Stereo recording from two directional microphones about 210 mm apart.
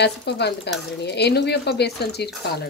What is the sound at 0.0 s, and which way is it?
Speech, 55° left (ahead or behind).